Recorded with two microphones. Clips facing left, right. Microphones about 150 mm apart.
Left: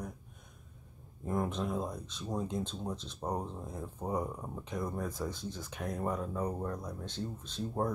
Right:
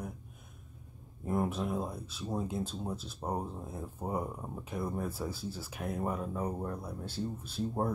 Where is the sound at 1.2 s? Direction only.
5° right (ahead or behind).